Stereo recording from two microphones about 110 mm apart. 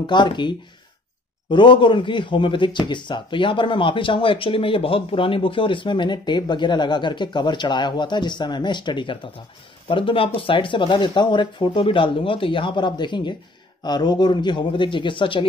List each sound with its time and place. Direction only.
0.0 s speech: 45° left (ahead or behind)